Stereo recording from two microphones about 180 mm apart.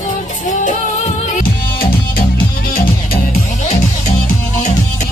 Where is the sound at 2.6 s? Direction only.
55° left (ahead or behind).